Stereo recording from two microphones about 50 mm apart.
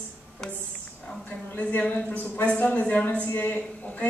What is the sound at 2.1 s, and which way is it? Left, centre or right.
Speech, left.